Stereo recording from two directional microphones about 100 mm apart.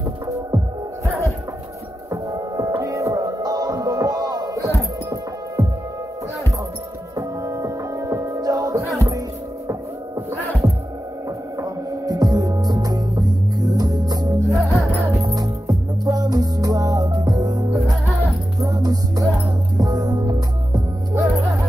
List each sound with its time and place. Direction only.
2.0 s music: 30° right (ahead or behind)
7.2 s music: 35° right (ahead or behind)
14.4 s music: centre (ahead or behind)
15.2 s music: 35° right (ahead or behind)